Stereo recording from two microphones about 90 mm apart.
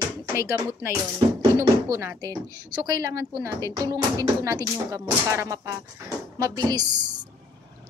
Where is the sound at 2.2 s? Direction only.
45° right (ahead or behind).